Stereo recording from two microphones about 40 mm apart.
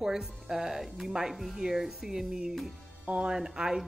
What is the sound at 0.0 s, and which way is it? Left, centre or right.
A woman's voice, centre.